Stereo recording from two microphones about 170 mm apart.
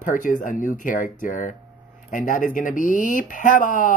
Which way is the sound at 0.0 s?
50° left (ahead or behind).